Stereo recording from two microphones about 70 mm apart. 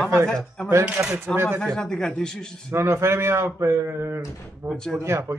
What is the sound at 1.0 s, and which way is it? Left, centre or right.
Speech, right.